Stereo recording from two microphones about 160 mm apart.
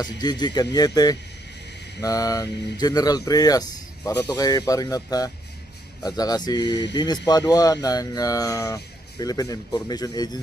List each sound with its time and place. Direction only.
0.2 s speech: 25° left (ahead or behind)